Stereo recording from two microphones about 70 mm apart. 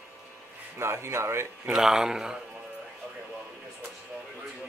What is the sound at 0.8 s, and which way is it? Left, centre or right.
Speech, right.